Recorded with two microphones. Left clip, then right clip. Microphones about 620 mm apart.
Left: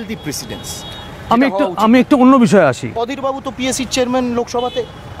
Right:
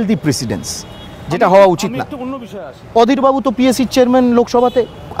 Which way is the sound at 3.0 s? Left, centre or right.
Right.